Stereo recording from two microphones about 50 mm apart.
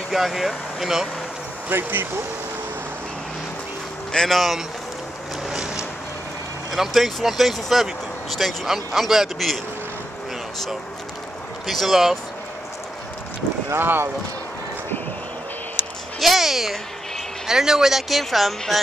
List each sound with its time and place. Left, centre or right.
0.1 s speech: centre
1.7 s speech: right
4.1 s speech: centre
4.4 s speech: centre
5.5 s vehicle: centre
6.7 s speech: centre
11.6 s speech: centre
13.7 s speech: right
16.2 s speech: centre